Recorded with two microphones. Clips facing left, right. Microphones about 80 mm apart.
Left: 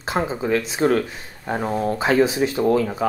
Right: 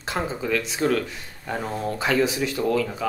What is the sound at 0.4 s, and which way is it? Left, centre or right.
Speech, left.